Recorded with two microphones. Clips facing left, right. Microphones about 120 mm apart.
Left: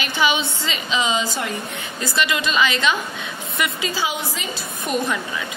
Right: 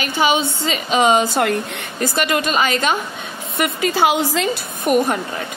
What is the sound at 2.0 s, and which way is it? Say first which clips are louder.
A woman's voice: right 4 dB; 45° right (ahead or behind).